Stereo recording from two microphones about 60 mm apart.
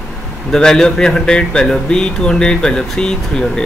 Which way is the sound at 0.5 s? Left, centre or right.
Centre.